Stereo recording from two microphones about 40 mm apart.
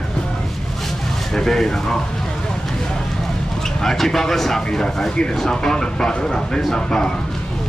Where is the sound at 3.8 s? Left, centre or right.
Centre.